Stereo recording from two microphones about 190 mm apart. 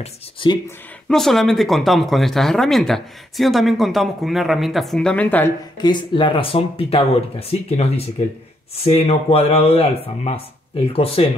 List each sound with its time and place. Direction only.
0.0 s speech: 25° left (ahead or behind)
0.7 s speech: 5° left (ahead or behind)
5.8 s speech: 25° left (ahead or behind)